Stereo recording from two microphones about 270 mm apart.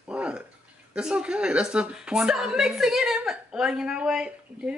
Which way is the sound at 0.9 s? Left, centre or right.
Centre.